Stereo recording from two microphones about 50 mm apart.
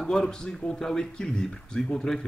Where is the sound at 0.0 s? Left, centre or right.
Centre.